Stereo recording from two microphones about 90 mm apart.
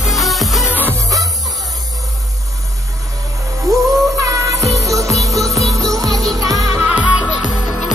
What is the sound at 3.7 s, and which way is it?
Music, 40° right (ahead or behind).